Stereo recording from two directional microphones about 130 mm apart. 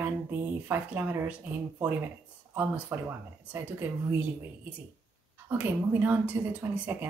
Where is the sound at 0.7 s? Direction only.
15° right (ahead or behind).